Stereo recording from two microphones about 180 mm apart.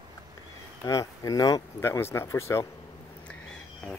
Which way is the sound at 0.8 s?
20° left (ahead or behind).